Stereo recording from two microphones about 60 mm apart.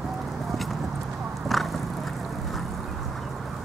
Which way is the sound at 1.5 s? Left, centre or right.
Centre.